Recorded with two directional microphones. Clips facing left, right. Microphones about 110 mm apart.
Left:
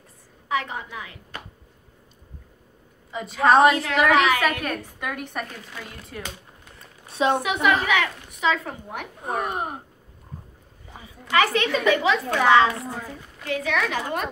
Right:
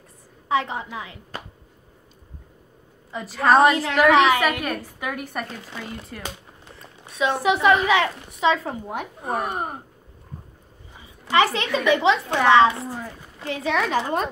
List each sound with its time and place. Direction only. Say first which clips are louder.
0.5 s a woman's voice: right 4 dB; 30° right (ahead or behind)
3.1 s a woman's voice: even; centre (ahead or behind)
4.1 s a woman's voice: right 3 dB; 30° right (ahead or behind)
4.4 s a woman's voice: right 1 dB; 5° right (ahead or behind)
7.1 s a woman's voice: left 2 dB; 30° left (ahead or behind)
7.6 s a woman's voice: right 3 dB; 30° right (ahead or behind)
9.2 s a woman's voice: even; centre (ahead or behind)
11.2 s a woman's voice: right 1 dB; 30° right (ahead or behind)